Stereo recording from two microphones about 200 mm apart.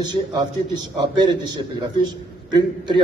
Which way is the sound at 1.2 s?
20° right (ahead or behind).